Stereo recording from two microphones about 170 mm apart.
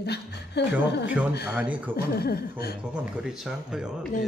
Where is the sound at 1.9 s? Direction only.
65° left (ahead or behind).